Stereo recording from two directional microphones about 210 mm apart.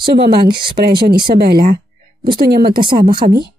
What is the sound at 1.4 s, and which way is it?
Speech, 45° right (ahead or behind).